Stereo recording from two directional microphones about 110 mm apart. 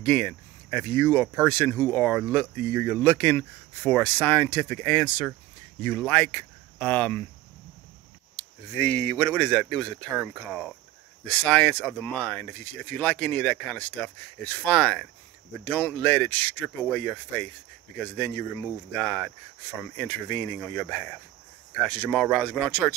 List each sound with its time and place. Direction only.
0.0 s a sound: 10° left (ahead or behind)
0.8 s speech: 15° left (ahead or behind)
8.4 s speech: 15° left (ahead or behind)
10.2 s speech: 5° right (ahead or behind)
11.2 s speech: 15° left (ahead or behind)
19.0 s speech: centre (ahead or behind)
20.0 s speech: 15° left (ahead or behind); by 21.2 s centre (ahead or behind)
21.8 s speech: 10° left (ahead or behind)